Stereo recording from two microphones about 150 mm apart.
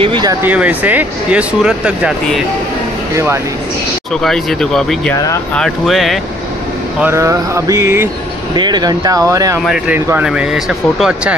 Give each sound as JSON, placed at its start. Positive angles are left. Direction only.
{"t": 0.0, "sound": "a sound", "side_deg": -30}
{"t": 0.4, "sound": "speech", "side_deg": -10}
{"t": 4.1, "sound": "speech", "side_deg": 5}
{"t": 5.1, "sound": "speech", "side_deg": 20}
{"t": 5.6, "sound": "speech", "side_deg": 0}
{"t": 7.0, "sound": "a sound", "side_deg": -15}
{"t": 8.5, "sound": "a sound", "side_deg": -30}
{"t": 9.9, "sound": "speech", "side_deg": -15}
{"t": 10.2, "sound": "speech", "side_deg": -5}